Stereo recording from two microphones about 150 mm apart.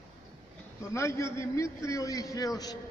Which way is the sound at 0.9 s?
20° left (ahead or behind).